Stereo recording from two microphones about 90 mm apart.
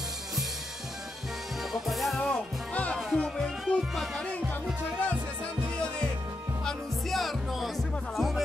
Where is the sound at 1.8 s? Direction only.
Centre (ahead or behind).